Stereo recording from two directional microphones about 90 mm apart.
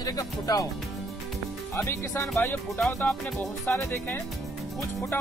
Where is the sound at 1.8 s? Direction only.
30° left (ahead or behind).